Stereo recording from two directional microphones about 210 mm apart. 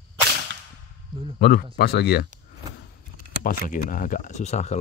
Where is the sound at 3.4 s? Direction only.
40° left (ahead or behind).